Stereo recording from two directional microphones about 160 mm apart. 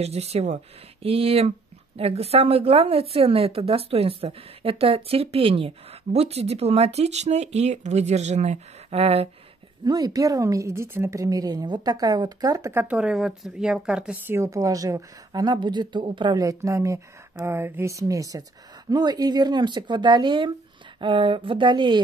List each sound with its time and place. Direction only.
0.0 s a woman's voice: 40° right (ahead or behind)
9.8 s a woman's voice: 25° right (ahead or behind)